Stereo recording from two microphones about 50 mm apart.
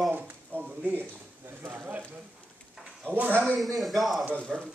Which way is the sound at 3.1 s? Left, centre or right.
Right.